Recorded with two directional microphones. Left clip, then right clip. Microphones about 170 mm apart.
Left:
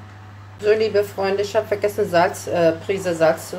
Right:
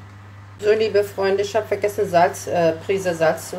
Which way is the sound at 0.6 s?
10° right (ahead or behind).